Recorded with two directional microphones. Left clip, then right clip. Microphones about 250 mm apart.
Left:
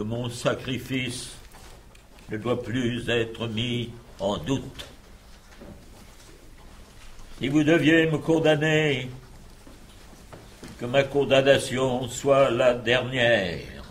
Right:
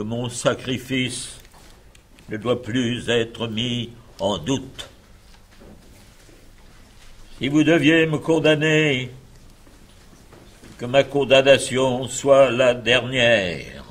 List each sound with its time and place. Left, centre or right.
0.0 s a man's voice: centre
7.3 s a man's voice: centre
10.8 s a man's voice: centre